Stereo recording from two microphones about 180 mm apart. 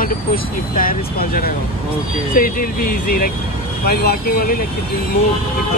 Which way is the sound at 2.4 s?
55° left (ahead or behind).